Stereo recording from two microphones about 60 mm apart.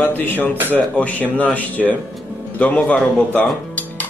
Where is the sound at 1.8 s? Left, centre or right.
Centre.